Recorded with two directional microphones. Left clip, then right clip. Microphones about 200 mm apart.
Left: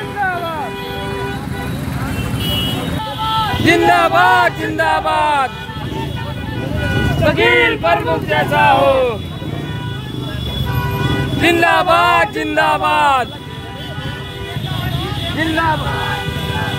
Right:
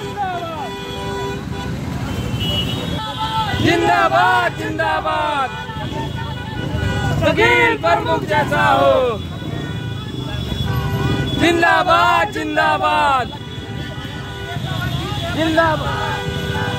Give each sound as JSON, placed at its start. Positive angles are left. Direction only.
{"t": 3.6, "sound": "a sound", "side_deg": 15}
{"t": 7.2, "sound": "speech", "side_deg": 5}
{"t": 11.4, "sound": "speech", "side_deg": 5}
{"t": 15.5, "sound": "speech", "side_deg": 0}